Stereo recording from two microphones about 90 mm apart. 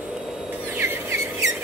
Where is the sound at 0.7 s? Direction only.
25° right (ahead or behind).